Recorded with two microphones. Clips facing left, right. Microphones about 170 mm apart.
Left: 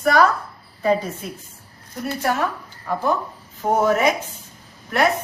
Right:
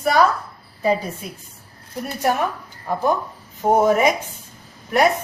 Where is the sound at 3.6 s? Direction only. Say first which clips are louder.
Right 2 dB; 15° right (ahead or behind).